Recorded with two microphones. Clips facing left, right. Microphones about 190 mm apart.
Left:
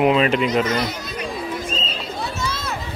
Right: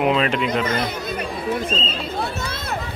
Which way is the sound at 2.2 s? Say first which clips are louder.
Even; 60° right (ahead or behind).